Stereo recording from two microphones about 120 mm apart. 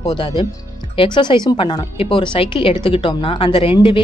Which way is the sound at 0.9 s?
40° left (ahead or behind).